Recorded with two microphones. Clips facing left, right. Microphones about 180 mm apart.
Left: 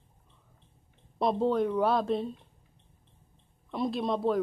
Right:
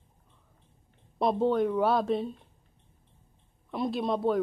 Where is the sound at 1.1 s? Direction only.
Centre (ahead or behind).